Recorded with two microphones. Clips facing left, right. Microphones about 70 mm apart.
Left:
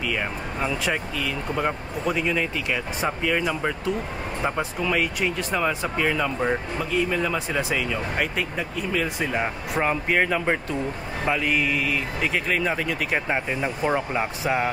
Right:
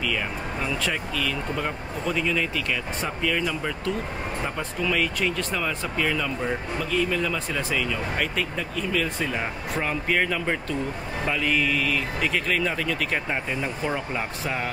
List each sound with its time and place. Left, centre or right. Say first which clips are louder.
0.0 s speech: left 1 dB; centre